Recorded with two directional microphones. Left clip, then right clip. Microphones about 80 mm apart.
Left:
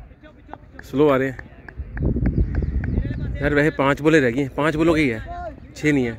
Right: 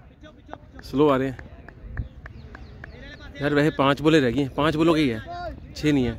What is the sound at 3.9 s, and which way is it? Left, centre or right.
Speech, centre.